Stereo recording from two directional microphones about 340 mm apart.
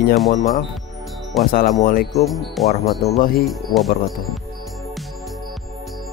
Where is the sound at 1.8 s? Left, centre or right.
Left.